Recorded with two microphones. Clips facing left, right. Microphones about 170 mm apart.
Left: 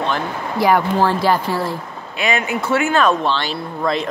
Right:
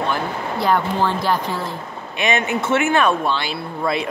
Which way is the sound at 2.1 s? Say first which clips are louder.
Even; 25° right (ahead or behind).